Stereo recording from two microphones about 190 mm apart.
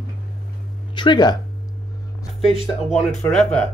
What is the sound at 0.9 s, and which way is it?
Speech, 25° left (ahead or behind).